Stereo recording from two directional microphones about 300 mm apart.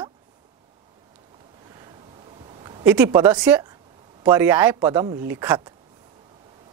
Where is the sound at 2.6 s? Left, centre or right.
Centre.